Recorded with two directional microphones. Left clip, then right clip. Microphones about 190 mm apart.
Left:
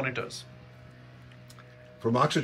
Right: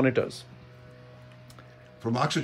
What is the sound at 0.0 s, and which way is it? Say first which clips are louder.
Speech: right 7 dB; 60° right (ahead or behind).